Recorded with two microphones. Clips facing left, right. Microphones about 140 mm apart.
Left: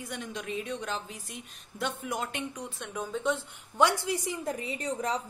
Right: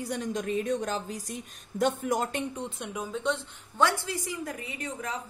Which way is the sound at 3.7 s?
15° left (ahead or behind).